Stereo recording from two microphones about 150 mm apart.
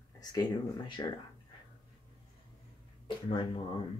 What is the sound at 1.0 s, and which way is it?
Speech, 30° left (ahead or behind).